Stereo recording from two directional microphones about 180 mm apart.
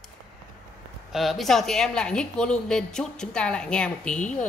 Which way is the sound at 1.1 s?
Centre (ahead or behind).